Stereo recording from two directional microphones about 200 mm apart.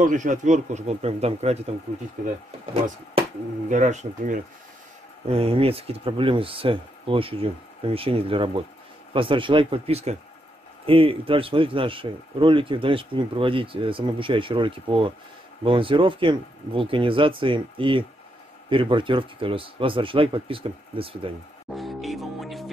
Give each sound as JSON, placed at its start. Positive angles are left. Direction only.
{"t": 0.0, "sound": "speech", "side_deg": -40}
{"t": 3.6, "sound": "speech", "side_deg": -35}
{"t": 21.7, "sound": "music", "side_deg": 0}